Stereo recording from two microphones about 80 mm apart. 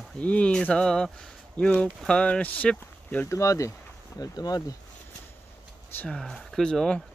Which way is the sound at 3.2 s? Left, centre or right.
Left.